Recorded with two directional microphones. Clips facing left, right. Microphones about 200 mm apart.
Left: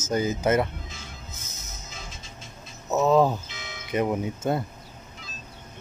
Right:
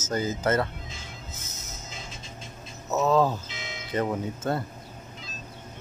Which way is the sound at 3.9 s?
15° left (ahead or behind).